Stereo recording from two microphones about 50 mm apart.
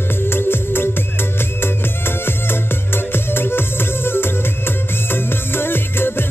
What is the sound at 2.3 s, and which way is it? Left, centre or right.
Music, left.